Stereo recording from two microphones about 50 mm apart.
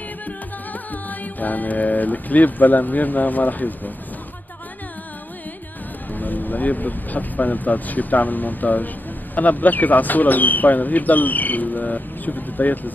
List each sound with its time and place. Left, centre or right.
1.0 s speech: left
6.1 s speech: left